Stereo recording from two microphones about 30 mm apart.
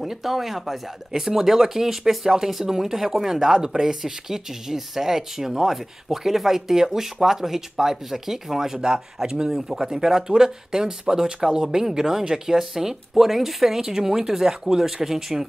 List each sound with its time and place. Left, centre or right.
0.0 s speech: centre
13.7 s speech: centre